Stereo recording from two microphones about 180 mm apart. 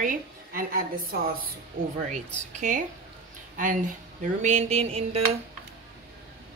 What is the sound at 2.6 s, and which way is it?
Speech, 45° right (ahead or behind).